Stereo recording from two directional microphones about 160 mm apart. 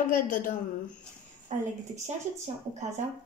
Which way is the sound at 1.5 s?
50° right (ahead or behind).